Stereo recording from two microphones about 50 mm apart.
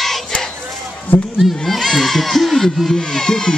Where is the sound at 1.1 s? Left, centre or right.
Left.